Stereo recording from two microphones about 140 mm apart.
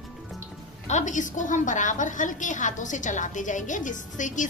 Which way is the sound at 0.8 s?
60° left (ahead or behind).